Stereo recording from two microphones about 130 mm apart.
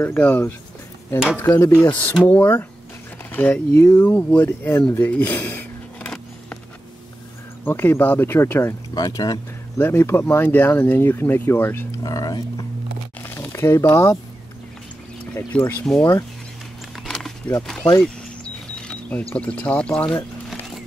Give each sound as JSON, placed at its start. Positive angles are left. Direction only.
{"t": 0.0, "sound": "speech", "side_deg": 15}
{"t": 4.9, "sound": "a sound", "side_deg": 15}
{"t": 7.6, "sound": "speech", "side_deg": 15}
{"t": 9.8, "sound": "speech", "side_deg": 15}
{"t": 12.0, "sound": "speech", "side_deg": 30}
{"t": 15.3, "sound": "speech", "side_deg": 15}
{"t": 16.9, "sound": "a sound", "side_deg": 5}
{"t": 17.6, "sound": "speech", "side_deg": 5}
{"t": 18.0, "sound": "a sound", "side_deg": 5}
{"t": 19.3, "sound": "speech", "side_deg": 10}